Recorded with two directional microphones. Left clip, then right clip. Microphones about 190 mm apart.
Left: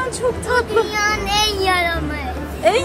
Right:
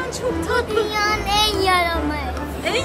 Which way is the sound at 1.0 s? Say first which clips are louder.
Left 1 dB; 30° right (ahead or behind).